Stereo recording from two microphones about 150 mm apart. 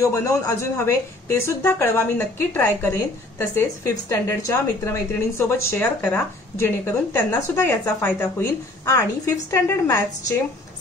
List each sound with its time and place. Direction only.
0.0 s a woman's voice: 20° left (ahead or behind)